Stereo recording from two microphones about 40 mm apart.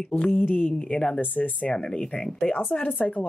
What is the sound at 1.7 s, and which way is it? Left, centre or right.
Speech, centre.